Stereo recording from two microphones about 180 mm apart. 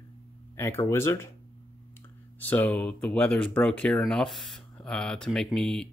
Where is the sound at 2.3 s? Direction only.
10° left (ahead or behind).